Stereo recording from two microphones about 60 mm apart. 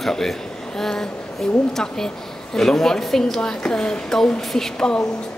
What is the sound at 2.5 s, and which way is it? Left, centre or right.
A child's voice, centre.